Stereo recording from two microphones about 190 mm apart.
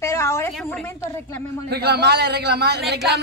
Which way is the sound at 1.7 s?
60° right (ahead or behind).